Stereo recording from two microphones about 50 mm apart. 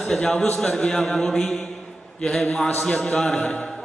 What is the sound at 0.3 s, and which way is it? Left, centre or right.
Music, left.